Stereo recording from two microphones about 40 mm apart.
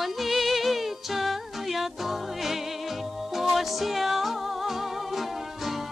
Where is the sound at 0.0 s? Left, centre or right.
Centre.